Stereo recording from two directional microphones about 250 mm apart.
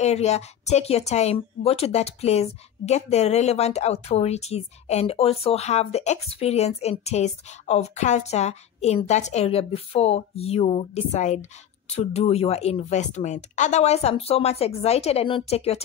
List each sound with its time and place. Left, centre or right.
0.0 s speech: left